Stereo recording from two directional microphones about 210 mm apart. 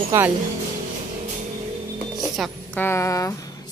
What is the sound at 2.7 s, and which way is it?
Speech, 10° left (ahead or behind).